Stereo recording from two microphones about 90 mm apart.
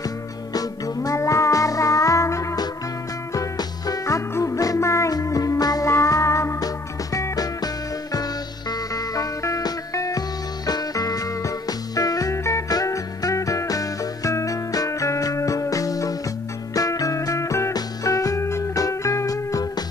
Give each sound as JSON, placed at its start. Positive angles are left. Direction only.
{"t": 0.0, "sound": "music", "side_deg": 45}
{"t": 3.3, "sound": "music", "side_deg": 45}
{"t": 6.6, "sound": "music", "side_deg": 45}